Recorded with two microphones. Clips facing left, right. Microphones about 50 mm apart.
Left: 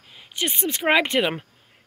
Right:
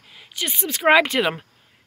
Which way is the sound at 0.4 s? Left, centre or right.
Centre.